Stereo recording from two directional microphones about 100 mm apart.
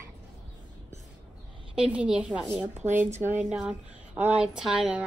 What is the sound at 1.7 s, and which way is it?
Speech, 15° right (ahead or behind).